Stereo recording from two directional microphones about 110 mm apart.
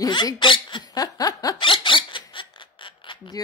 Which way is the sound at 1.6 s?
50° left (ahead or behind).